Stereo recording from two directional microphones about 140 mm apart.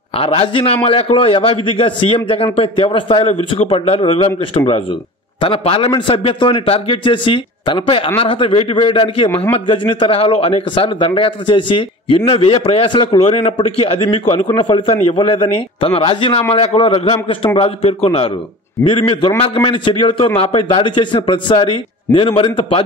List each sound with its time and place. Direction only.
0.2 s a man's voice: 40° left (ahead or behind)